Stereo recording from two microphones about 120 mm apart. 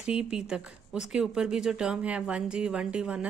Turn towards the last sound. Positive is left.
turn(degrees=-10)  # may be behind; listen again after turning